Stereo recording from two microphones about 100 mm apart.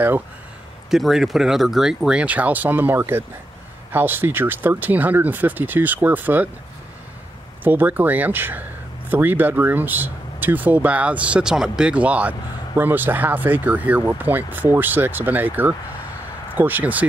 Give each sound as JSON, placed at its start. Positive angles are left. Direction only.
{"t": 0.8, "sound": "speech", "side_deg": -5}
{"t": 7.6, "sound": "speech", "side_deg": -20}